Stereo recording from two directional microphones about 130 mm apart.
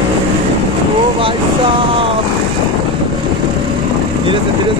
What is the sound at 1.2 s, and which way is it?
Speech, 40° right (ahead or behind).